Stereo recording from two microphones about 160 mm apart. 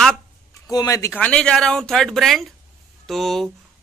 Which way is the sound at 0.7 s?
20° left (ahead or behind).